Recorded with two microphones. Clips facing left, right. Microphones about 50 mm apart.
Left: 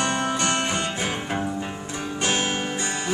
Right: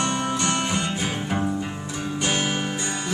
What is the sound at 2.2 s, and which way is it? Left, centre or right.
Music, centre.